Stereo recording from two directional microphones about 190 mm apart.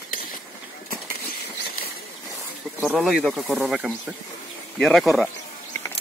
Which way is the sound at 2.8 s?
Centre (ahead or behind).